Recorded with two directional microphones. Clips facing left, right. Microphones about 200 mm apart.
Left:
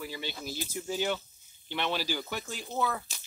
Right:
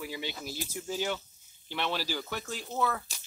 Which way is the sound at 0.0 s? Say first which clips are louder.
Right 1 dB; 10° right (ahead or behind).